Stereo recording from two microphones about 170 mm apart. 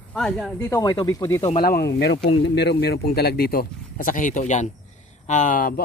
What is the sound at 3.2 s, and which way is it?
Speech, 65° left (ahead or behind).